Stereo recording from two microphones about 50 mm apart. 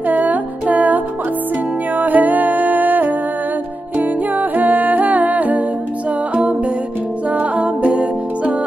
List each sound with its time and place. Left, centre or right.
0.0 s music: right
4.0 s humming: right
7.2 s music: right